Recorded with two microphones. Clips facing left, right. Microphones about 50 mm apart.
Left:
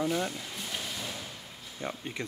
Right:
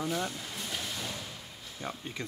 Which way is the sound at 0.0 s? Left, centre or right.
Centre.